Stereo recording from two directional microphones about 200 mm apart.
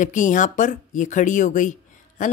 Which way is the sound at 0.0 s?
40° left (ahead or behind).